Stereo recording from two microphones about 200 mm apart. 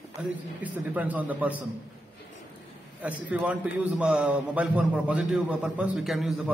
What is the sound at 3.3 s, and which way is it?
A man's voice, 5° right (ahead or behind).